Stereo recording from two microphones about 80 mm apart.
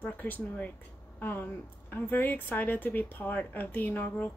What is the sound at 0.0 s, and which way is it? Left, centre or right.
Speech, left.